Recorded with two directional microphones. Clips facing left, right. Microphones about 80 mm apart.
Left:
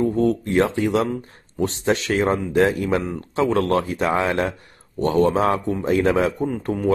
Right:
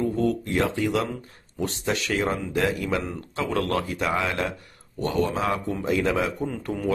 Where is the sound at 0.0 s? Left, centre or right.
Left.